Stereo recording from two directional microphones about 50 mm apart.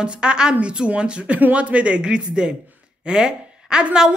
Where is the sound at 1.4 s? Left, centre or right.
Right.